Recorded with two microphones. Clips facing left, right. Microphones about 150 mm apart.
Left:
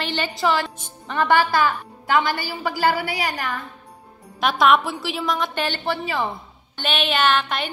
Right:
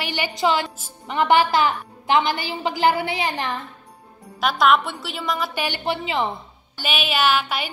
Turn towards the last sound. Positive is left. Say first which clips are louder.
# even
turn(degrees=-5)  # may be behind; listen again after turning